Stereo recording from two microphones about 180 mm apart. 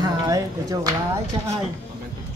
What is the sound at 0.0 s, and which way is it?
Speech, 20° right (ahead or behind).